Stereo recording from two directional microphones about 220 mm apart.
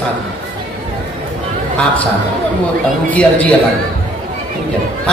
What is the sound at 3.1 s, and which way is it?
Speech, 5° left (ahead or behind).